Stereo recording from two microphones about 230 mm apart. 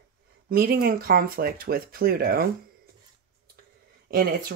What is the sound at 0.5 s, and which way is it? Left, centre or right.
Speech, right.